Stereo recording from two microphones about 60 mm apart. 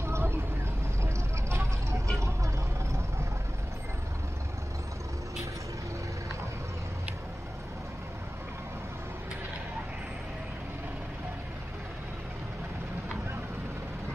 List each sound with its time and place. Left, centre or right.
0.0 s vehicle: right
1.0 s a sound: right
2.1 s vehicle: right